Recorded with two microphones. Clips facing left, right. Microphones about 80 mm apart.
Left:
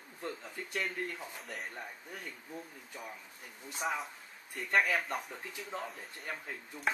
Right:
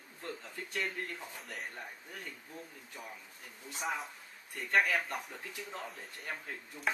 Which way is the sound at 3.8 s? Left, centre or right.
Centre.